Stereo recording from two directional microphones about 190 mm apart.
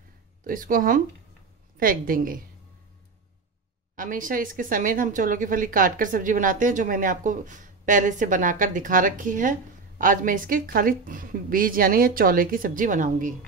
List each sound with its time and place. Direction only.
0.4 s speech: 45° right (ahead or behind)
3.9 s speech: 45° right (ahead or behind)